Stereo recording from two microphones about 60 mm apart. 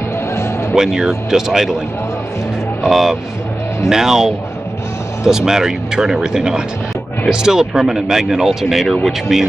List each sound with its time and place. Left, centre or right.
0.7 s speech: centre
2.8 s speech: centre